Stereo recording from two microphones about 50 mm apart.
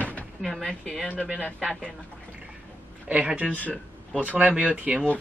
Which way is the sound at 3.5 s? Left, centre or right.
Left.